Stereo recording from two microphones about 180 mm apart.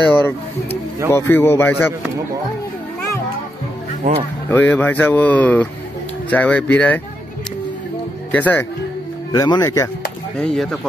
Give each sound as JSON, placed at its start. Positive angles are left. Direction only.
{"t": 1.1, "sound": "speech", "side_deg": 15}
{"t": 4.1, "sound": "speech", "side_deg": -45}
{"t": 4.5, "sound": "speech", "side_deg": 10}
{"t": 8.3, "sound": "speech", "side_deg": 10}
{"t": 9.3, "sound": "speech", "side_deg": 20}
{"t": 10.3, "sound": "speech", "side_deg": 5}